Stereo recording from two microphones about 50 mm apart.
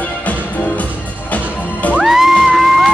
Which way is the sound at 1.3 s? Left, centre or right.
Left.